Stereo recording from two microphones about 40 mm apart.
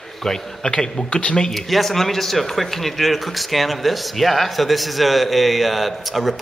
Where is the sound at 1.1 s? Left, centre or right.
Left.